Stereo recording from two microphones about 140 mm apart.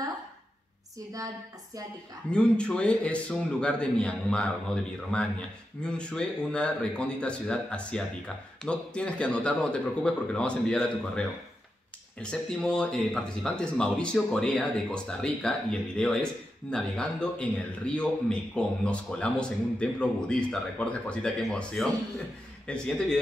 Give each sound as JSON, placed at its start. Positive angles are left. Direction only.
{"t": 2.3, "sound": "a man's voice", "side_deg": 5}